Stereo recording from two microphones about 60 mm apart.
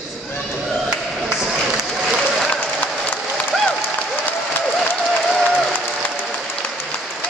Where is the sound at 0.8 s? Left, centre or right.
Centre.